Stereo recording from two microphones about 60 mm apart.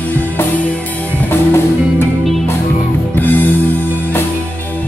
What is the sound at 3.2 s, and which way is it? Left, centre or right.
Music, left.